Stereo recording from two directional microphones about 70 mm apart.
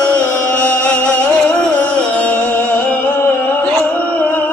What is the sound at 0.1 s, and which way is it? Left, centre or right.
Music, centre.